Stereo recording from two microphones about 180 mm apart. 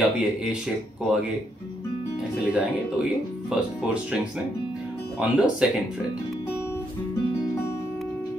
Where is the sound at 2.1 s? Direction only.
5° right (ahead or behind).